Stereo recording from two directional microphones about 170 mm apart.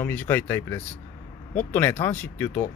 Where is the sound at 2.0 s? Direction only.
10° left (ahead or behind).